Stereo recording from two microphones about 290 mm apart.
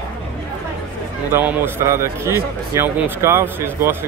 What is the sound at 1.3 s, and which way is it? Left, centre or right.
Speech, centre.